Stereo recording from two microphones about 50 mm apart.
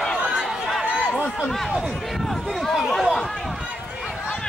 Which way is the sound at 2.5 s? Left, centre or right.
Centre.